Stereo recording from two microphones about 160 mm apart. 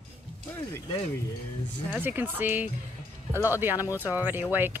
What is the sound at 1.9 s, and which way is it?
Speech, 10° right (ahead or behind).